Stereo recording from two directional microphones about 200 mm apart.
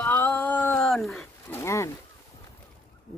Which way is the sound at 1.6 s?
15° left (ahead or behind).